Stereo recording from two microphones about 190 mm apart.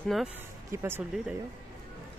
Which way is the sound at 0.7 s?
15° right (ahead or behind).